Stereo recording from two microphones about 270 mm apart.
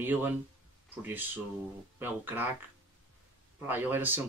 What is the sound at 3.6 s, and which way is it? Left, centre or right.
Speech, centre.